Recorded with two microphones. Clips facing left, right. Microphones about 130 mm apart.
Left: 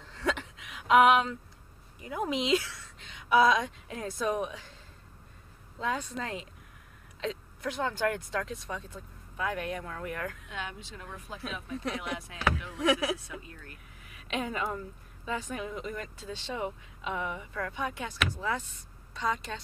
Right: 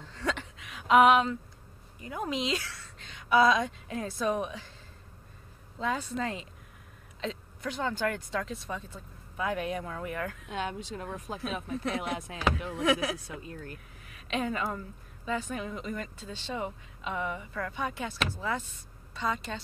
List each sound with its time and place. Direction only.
0.1 s a sound: 5° left (ahead or behind)
2.0 s a woman's voice: 5° left (ahead or behind)
5.8 s speech: centre (ahead or behind)
10.5 s speech: 40° right (ahead or behind)
12.7 s speech: centre (ahead or behind)
13.5 s speech: 35° right (ahead or behind)
14.1 s a woman's voice: 5° left (ahead or behind)